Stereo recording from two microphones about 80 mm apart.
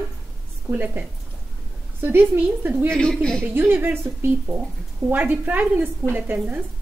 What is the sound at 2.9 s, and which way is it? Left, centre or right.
Speech, centre.